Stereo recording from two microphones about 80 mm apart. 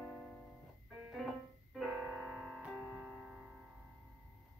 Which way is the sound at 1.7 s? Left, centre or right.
Centre.